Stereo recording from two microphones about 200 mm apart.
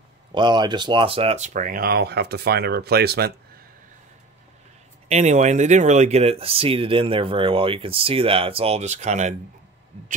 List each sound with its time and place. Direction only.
0.3 s speech: 20° right (ahead or behind); by 3.3 s 50° right (ahead or behind)
5.0 s speech: 35° right (ahead or behind)